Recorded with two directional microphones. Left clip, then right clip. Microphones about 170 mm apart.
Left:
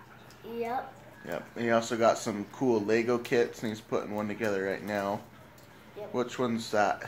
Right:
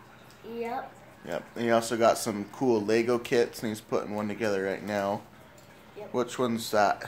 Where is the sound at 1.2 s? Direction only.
20° right (ahead or behind).